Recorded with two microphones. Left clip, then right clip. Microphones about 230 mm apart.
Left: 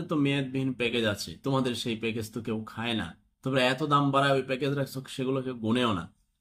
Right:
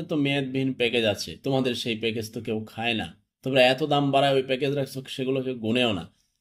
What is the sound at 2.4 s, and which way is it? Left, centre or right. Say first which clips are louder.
Speech: right 5 dB; left.